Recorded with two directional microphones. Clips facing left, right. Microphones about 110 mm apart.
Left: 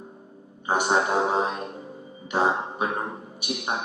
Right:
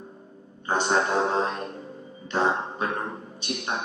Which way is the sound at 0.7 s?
10° left (ahead or behind).